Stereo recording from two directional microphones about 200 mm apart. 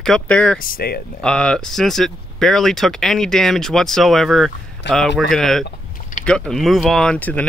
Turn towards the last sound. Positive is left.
turn(degrees=5)  # may be behind; listen again after turning